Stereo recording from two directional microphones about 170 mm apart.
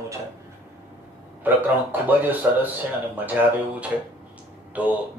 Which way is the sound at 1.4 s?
10° right (ahead or behind).